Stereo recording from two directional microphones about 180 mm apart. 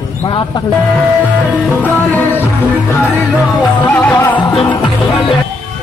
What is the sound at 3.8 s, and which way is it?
Music, 10° left (ahead or behind).